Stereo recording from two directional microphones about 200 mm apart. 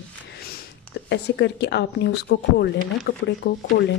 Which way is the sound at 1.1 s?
60° left (ahead or behind).